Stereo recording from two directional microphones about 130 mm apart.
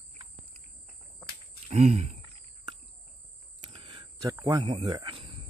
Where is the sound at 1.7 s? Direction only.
60° right (ahead or behind).